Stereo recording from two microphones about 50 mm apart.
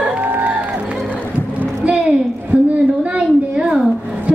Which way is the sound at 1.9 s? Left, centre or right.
Centre.